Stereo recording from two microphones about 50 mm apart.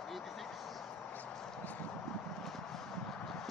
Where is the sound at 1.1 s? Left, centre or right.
Left.